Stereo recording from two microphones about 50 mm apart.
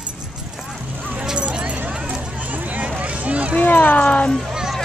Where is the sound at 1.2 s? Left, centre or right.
Centre.